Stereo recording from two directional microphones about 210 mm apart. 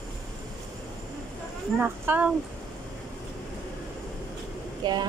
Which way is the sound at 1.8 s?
5° right (ahead or behind).